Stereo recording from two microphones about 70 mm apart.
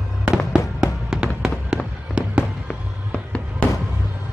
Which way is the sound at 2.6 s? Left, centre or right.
Centre.